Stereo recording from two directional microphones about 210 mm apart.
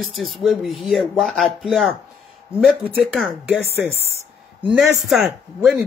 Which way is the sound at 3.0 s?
5° right (ahead or behind).